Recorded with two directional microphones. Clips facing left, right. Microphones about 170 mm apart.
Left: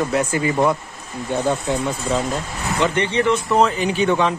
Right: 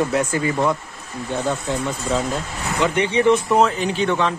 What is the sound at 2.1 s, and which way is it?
Speech, centre (ahead or behind).